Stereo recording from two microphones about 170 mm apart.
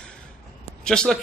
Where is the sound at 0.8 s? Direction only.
5° left (ahead or behind).